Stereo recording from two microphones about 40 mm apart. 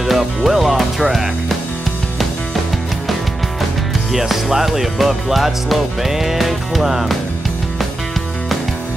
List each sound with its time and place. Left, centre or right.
0.0 s speech: centre
4.1 s speech: centre